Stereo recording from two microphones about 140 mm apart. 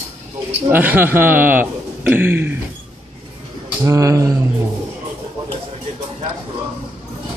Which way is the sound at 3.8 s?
20° right (ahead or behind).